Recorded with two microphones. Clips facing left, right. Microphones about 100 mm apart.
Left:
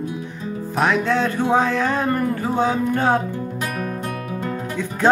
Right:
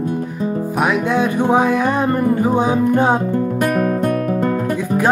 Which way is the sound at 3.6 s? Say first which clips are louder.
Right 11 dB; 55° right (ahead or behind).